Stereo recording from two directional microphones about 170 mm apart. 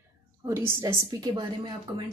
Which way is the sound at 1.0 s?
30° right (ahead or behind).